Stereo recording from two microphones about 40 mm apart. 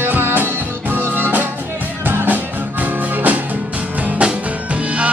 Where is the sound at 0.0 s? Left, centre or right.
Right.